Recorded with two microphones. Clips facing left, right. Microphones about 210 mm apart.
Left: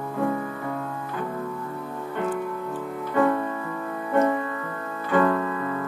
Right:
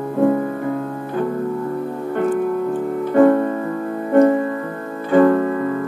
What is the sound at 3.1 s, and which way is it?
Music, 50° right (ahead or behind).